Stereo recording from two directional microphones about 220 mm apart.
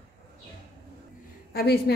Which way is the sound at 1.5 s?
45° left (ahead or behind).